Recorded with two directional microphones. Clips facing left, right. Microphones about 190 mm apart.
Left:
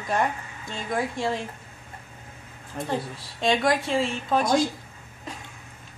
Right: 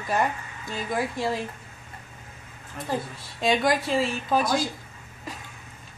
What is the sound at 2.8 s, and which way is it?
Speech, 35° left (ahead or behind).